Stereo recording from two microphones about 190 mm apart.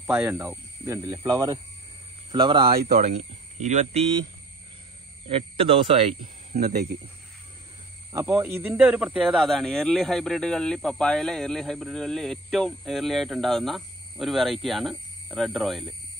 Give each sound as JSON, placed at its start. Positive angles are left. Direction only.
{"t": 0.0, "sound": "speech", "side_deg": -5}
{"t": 5.3, "sound": "speech", "side_deg": -25}
{"t": 6.2, "sound": "speech", "side_deg": -45}
{"t": 8.1, "sound": "speech", "side_deg": -10}